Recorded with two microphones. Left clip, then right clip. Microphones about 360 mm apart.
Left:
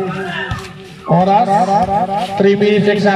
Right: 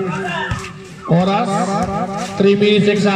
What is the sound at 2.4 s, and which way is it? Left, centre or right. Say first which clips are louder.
Speech: even; left.